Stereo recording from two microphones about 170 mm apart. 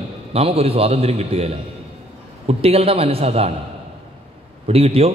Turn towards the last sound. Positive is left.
turn(degrees=-35)  # may be behind; listen again after turning